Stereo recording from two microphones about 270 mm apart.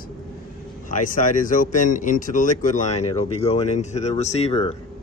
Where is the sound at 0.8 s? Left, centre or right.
Left.